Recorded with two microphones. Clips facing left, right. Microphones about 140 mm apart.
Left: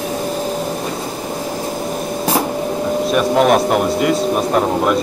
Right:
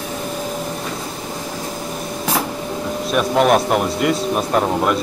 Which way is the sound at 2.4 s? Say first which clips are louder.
Left 5 dB; 25° left (ahead or behind).